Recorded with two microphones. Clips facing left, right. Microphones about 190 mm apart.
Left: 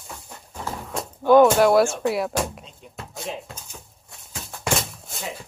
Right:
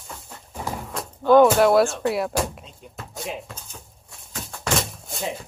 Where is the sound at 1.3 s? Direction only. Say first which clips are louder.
Even; centre (ahead or behind).